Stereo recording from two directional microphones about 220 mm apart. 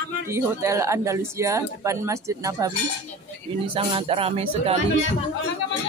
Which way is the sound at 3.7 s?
25° right (ahead or behind).